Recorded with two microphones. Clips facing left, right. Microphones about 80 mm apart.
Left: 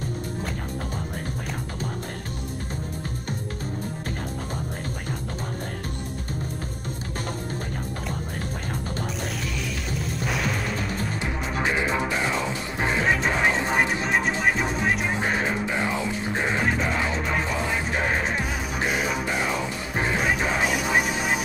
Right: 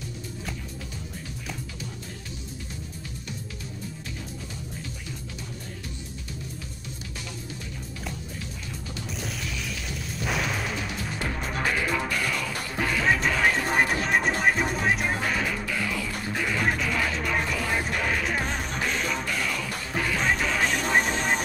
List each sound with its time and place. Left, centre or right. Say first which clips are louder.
9.8 s music: left 2 dB; centre
11.5 s music: left 2 dB; left
13.0 s music: even; centre
13.3 s music: left 1 dB; left
13.7 s music: left 1 dB; centre
15.1 s music: left 3 dB; left
18.9 s music: left 4 dB; centre
19.2 s music: left 4 dB; left
20.2 s music: even; centre